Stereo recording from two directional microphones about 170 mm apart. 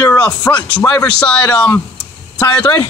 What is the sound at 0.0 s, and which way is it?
Speech, 20° left (ahead or behind).